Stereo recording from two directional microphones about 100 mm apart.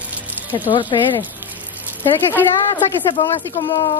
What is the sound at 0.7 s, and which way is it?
Speech, 55° left (ahead or behind).